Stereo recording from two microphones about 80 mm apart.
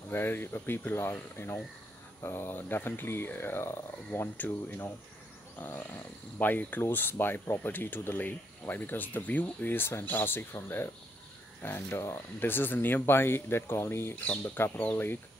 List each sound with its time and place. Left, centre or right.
0.1 s speech: left